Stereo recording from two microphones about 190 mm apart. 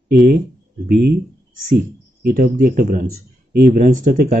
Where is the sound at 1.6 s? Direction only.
50° right (ahead or behind).